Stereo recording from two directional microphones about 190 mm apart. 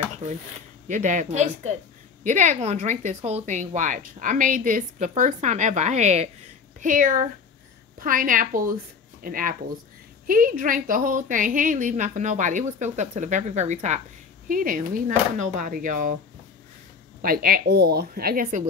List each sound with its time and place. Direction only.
0.2 s speech: 40° right (ahead or behind)
17.2 s speech: 50° right (ahead or behind)